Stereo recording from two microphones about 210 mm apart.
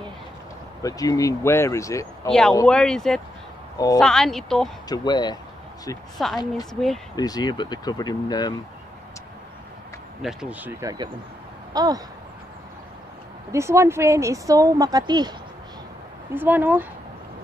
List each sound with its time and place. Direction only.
0.8 s speech: 15° left (ahead or behind)
3.7 s a woman's voice: 20° left (ahead or behind)
4.0 s speech: centre (ahead or behind)
4.8 s speech: 20° left (ahead or behind)
6.1 s speech: centre (ahead or behind)
7.2 s speech: 20° left (ahead or behind)
10.2 s speech: 5° right (ahead or behind)
13.5 s speech: 15° right (ahead or behind)
16.3 s speech: 10° right (ahead or behind)